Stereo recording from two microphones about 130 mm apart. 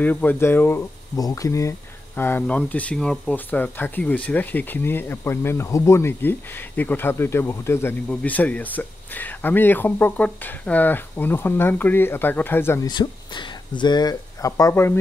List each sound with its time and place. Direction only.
0.0 s speech: 15° left (ahead or behind)
12.8 s speech: 35° left (ahead or behind); by 15.0 s 20° left (ahead or behind)